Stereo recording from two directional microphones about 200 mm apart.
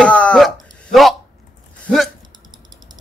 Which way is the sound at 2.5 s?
20° right (ahead or behind).